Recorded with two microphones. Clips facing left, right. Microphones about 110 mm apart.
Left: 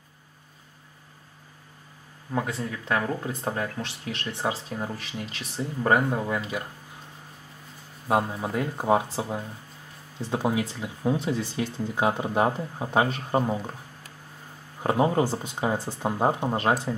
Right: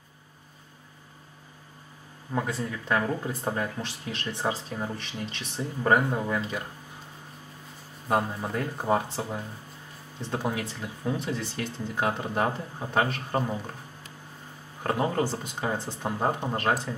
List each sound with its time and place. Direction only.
2.3 s speech: 5° left (ahead or behind)
8.1 s speech: 10° left (ahead or behind)
14.8 s speech: 15° left (ahead or behind)